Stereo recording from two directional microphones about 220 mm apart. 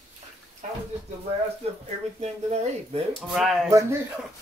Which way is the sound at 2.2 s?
30° right (ahead or behind).